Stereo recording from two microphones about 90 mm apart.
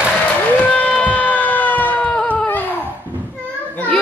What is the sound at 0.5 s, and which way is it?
Speech, 15° left (ahead or behind).